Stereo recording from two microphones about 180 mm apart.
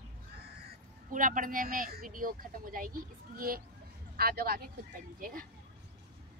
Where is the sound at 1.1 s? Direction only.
50° right (ahead or behind).